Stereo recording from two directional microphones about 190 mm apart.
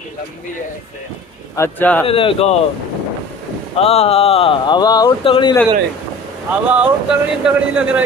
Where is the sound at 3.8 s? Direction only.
30° left (ahead or behind).